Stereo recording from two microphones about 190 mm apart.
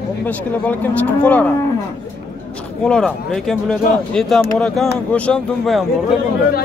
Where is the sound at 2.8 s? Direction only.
5° left (ahead or behind).